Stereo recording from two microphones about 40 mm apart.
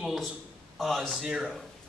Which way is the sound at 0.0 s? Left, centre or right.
Centre.